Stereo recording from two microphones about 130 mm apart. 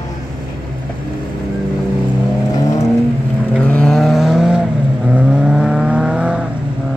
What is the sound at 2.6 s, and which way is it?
Vehicle, 25° left (ahead or behind).